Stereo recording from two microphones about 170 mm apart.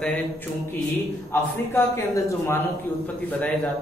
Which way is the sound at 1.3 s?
15° left (ahead or behind).